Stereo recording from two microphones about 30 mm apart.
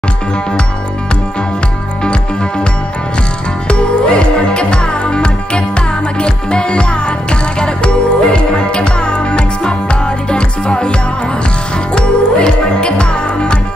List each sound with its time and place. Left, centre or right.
3.6 s music: left